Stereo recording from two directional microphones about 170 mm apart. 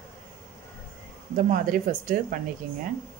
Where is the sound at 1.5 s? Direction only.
55° right (ahead or behind).